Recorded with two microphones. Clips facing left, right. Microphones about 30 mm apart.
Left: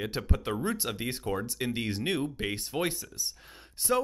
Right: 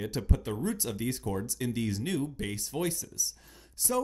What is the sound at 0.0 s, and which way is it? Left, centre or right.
Speech, left.